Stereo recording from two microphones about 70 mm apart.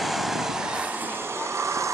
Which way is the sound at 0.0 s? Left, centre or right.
Centre.